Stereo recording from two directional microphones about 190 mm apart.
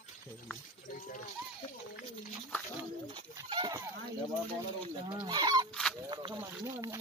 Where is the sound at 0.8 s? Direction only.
40° left (ahead or behind).